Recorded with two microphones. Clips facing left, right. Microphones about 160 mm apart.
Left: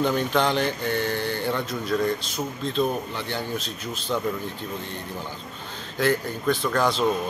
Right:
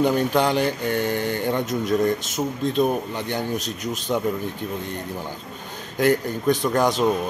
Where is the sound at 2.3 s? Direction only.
45° right (ahead or behind).